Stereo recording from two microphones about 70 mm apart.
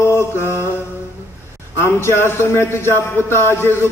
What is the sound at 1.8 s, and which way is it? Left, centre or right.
A man's voice, left.